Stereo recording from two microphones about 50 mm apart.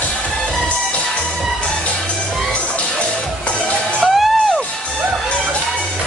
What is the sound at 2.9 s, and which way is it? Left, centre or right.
Music, left.